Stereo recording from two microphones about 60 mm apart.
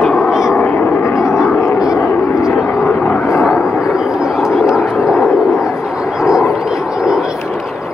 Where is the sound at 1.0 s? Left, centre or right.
Left.